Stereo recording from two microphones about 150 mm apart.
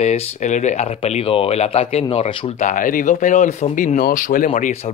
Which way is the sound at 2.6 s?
60° left (ahead or behind).